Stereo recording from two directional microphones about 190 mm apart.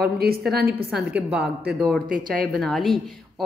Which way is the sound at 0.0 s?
55° right (ahead or behind).